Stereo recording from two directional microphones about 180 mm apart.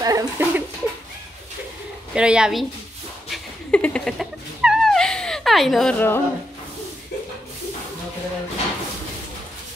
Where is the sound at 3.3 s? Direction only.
5° left (ahead or behind).